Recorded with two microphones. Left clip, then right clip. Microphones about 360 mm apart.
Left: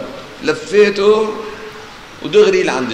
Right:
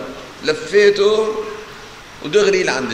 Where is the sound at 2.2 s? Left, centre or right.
Centre.